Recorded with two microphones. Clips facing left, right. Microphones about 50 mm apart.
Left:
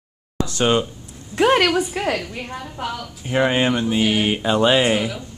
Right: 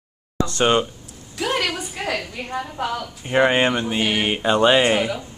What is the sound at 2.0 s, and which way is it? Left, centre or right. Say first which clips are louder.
Speech: left 5 dB; left.